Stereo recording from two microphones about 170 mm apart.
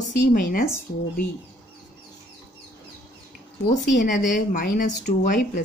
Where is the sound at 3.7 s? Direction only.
50° left (ahead or behind).